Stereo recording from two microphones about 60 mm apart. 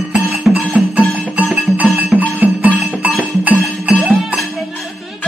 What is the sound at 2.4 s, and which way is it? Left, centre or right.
Music, right.